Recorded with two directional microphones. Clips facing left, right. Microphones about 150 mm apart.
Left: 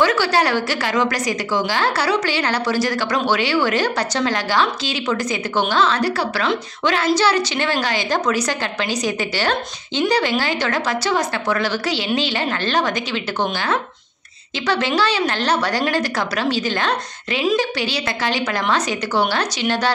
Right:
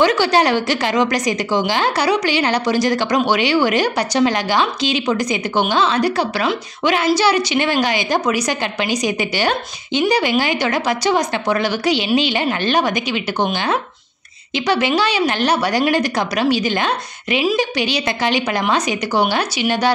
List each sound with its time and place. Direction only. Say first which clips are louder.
0.0 s a woman's voice: right 3 dB; 20° right (ahead or behind)